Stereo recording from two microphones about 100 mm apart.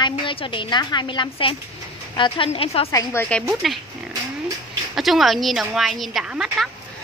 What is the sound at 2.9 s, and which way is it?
Speech, 25° left (ahead or behind).